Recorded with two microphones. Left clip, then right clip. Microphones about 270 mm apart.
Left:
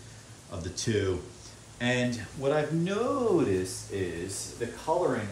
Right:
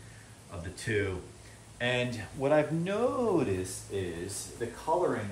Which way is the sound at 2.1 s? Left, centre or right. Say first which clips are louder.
Right 1 dB; right.